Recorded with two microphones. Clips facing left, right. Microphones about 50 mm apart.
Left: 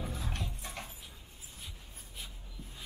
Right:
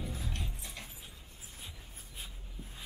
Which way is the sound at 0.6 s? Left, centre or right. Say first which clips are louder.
Left 4 dB; left.